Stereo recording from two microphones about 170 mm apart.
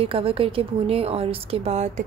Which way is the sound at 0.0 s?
35° right (ahead or behind).